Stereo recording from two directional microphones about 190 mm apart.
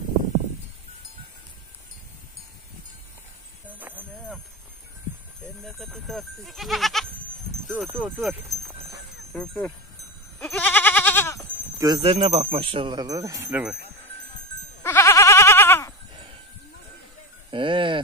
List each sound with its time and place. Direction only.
5.6 s speech: centre (ahead or behind)
10.4 s goat: 10° left (ahead or behind)
11.8 s speech: 25° right (ahead or behind); by 13.7 s 10° right (ahead or behind)
14.8 s goat: 15° left (ahead or behind)
17.5 s speech: 25° right (ahead or behind)